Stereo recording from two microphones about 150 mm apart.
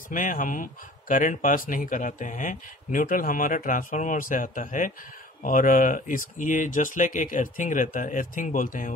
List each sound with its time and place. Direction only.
0.1 s speech: 60° left (ahead or behind)